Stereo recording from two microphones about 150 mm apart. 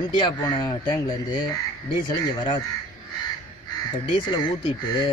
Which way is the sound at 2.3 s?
30° left (ahead or behind).